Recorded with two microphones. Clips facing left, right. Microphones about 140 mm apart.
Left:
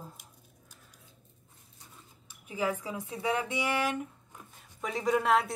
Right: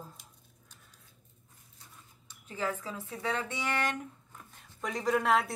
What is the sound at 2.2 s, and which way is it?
Speech, 10° left (ahead or behind).